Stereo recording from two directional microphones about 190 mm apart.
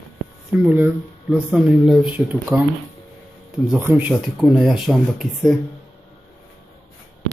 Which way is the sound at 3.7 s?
10° right (ahead or behind).